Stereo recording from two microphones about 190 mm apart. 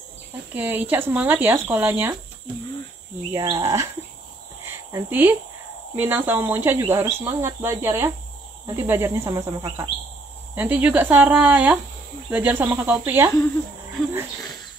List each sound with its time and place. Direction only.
0.6 s speech: 10° right (ahead or behind)
3.3 s speech: 15° right (ahead or behind)
4.9 s speech: 10° right (ahead or behind)